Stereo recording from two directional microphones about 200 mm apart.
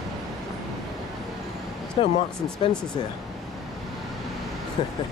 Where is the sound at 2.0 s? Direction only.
25° left (ahead or behind).